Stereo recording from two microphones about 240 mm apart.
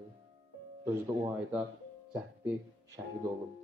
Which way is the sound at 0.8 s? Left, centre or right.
Centre.